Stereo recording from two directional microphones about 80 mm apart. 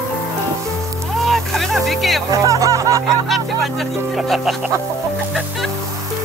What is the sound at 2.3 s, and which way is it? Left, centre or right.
Music, right.